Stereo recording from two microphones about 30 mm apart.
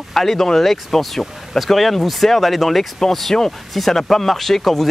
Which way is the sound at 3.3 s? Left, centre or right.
Left.